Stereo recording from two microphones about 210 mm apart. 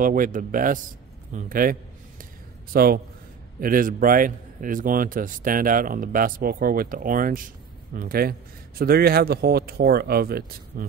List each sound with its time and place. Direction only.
0.0 s speech: 40° right (ahead or behind)
1.3 s a sound: 40° right (ahead or behind)
2.7 s a man's voice: 45° right (ahead or behind)